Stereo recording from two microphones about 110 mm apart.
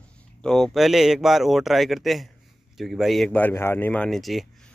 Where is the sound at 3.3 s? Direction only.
15° left (ahead or behind).